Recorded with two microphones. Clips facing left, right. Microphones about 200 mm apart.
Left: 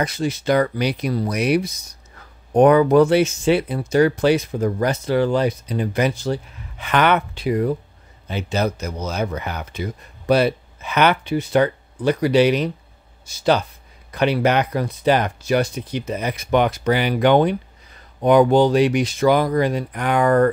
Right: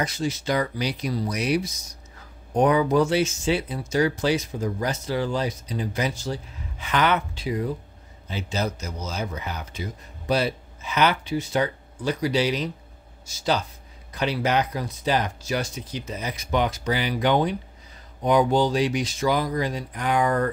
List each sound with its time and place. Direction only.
0.0 s speech: 60° left (ahead or behind)